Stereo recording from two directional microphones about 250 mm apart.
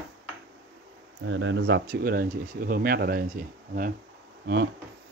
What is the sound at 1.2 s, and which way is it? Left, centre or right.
Speech, right.